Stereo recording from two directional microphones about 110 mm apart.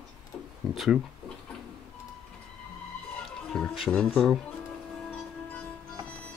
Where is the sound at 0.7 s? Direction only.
Centre (ahead or behind).